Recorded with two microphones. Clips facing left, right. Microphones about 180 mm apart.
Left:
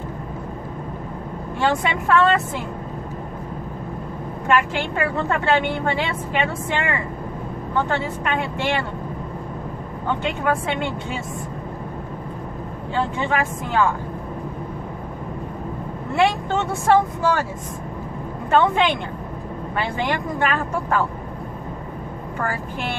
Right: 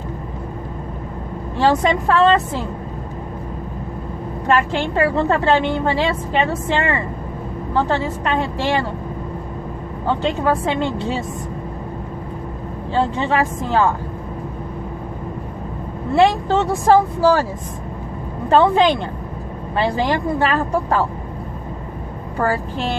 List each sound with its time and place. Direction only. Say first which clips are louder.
1.6 s a woman's voice: right 5 dB; 35° right (ahead or behind)
4.5 s a woman's voice: right 2 dB; 35° right (ahead or behind)
10.0 s a woman's voice: right 4 dB; 35° right (ahead or behind)
12.9 s a woman's voice: right 4 dB; 35° right (ahead or behind)
16.2 s a woman's voice: right 5 dB; 35° right (ahead or behind)
18.5 s a woman's voice: right 4 dB; 35° right (ahead or behind)
22.4 s a woman's voice: right 7 dB; 35° right (ahead or behind)